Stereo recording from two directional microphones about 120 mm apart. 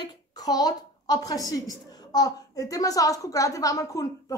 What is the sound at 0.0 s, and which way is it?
A woman's voice, 35° left (ahead or behind).